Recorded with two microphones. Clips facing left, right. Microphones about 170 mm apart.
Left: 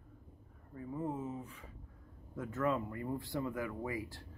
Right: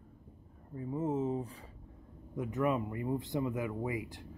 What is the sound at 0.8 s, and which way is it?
Speech, 25° right (ahead or behind).